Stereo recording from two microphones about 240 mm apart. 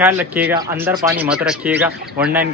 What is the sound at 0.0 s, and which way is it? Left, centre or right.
Speech, centre.